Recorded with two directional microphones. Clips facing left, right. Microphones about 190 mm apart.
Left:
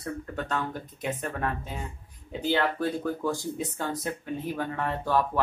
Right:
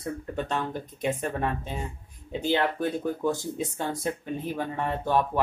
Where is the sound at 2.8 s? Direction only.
20° right (ahead or behind).